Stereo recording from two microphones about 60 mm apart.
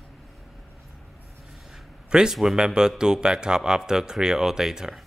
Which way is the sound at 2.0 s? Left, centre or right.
Centre.